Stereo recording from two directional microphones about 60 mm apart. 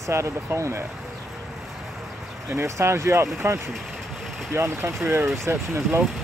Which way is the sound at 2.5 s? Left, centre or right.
Right.